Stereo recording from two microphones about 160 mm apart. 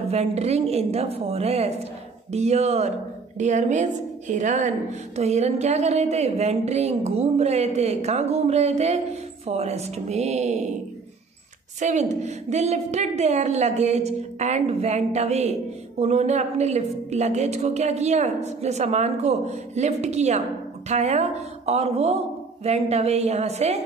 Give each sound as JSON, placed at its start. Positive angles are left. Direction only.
{"t": 0.1, "sound": "a woman's voice", "side_deg": -40}
{"t": 11.8, "sound": "a woman's voice", "side_deg": -50}